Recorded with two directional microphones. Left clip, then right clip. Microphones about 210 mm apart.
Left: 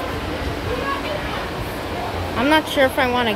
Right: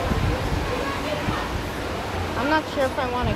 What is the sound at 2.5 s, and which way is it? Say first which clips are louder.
Speech: left 7 dB; 25° left (ahead or behind).